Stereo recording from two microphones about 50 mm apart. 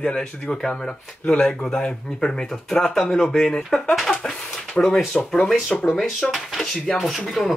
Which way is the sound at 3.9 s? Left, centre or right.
Centre.